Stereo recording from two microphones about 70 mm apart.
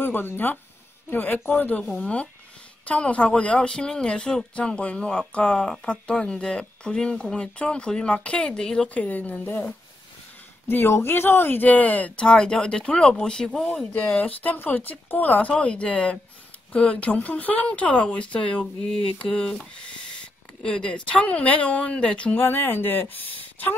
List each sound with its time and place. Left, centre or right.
0.0 s speech: left; by 13.7 s centre
14.0 s speech: left
22.3 s speech: left